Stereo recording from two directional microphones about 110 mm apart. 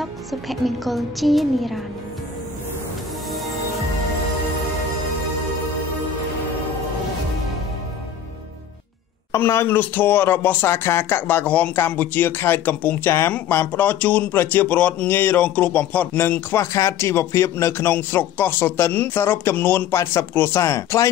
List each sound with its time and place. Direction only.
0.0 s music: centre (ahead or behind)
9.3 s speech: 25° left (ahead or behind)